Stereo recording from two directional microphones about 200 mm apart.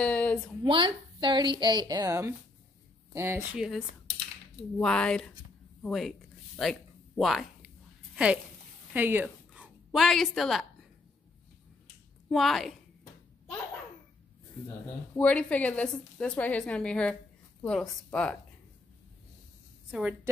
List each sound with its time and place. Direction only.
0.0 s a sound: 5° left (ahead or behind)
0.7 s a woman's voice: 25° right (ahead or behind)
3.5 s speech: centre (ahead or behind)
5.8 s a sound: centre (ahead or behind)
8.9 s a woman's voice: 10° right (ahead or behind)
12.3 s speech: centre (ahead or behind)
14.9 s a woman's voice: 5° left (ahead or behind)
19.9 s speech: 5° right (ahead or behind)